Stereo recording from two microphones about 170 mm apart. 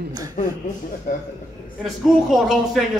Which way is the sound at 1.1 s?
55° left (ahead or behind).